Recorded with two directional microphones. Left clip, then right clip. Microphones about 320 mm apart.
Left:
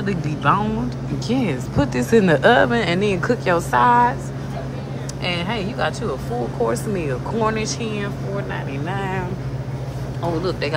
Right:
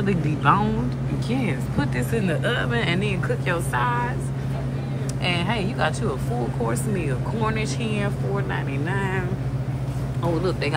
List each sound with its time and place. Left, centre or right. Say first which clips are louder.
0.0 s a woman's voice: left 1 dB; centre
5.2 s a woman's voice: left 1 dB; centre